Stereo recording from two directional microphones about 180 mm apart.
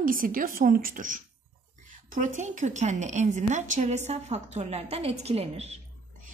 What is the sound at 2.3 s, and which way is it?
A woman's voice, 45° right (ahead or behind).